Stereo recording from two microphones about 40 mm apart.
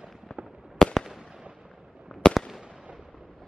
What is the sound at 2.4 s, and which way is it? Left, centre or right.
Fireworks, centre.